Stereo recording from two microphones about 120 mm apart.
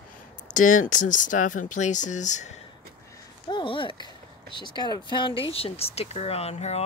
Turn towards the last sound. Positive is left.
turn(degrees=60)  # may be behind; listen again after turning